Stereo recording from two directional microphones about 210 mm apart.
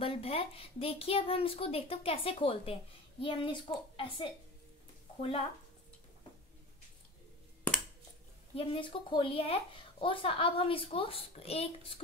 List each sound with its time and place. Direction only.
0.0 s speech: 25° left (ahead or behind)
8.5 s speech: 25° left (ahead or behind)